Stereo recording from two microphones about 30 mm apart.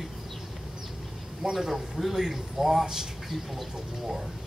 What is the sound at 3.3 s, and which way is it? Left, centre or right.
Speech, centre.